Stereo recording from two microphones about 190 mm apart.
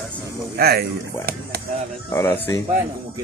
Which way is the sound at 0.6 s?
55° right (ahead or behind).